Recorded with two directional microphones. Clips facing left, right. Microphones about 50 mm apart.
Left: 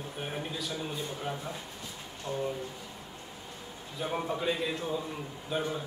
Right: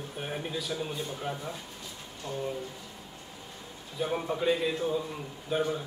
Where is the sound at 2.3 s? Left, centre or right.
Centre.